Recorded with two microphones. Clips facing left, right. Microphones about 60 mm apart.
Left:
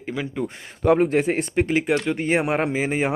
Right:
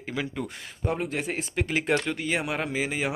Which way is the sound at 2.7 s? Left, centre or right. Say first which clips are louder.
Left 6 dB; left.